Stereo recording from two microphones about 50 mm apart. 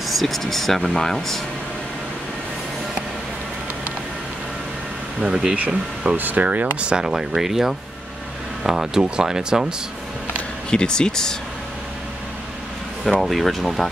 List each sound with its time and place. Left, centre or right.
0.1 s speech: centre
5.3 s speech: centre
6.1 s speech: right
6.9 s speech: centre
10.7 s speech: centre
13.0 s speech: centre